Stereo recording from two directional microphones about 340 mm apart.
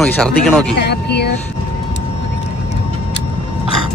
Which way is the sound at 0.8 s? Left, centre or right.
Left.